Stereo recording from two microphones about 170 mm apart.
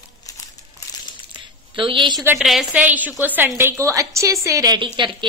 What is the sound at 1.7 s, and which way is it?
Speech, 30° right (ahead or behind).